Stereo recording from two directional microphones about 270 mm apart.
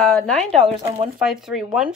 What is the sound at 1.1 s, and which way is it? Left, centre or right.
Speech, centre.